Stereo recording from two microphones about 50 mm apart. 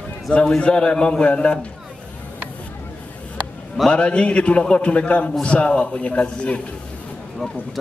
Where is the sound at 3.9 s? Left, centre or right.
Left.